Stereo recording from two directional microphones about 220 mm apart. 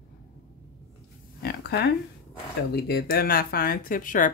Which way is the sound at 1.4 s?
45° left (ahead or behind).